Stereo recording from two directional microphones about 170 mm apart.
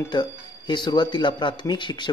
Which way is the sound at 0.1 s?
25° left (ahead or behind).